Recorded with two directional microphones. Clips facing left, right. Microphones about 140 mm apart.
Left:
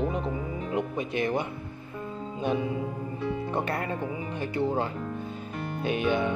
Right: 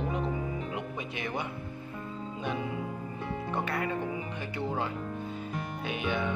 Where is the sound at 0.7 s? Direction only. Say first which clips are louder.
Left 7 dB; 40° left (ahead or behind).